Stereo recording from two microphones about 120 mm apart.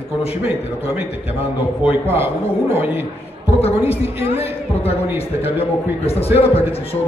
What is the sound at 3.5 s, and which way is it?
Speech, 55° left (ahead or behind).